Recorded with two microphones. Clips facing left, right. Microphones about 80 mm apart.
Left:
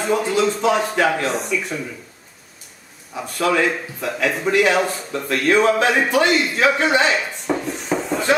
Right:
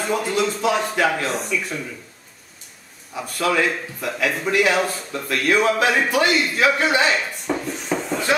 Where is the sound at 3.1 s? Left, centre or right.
Centre.